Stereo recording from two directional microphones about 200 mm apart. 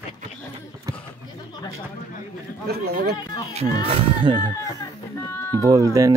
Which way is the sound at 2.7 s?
50° right (ahead or behind).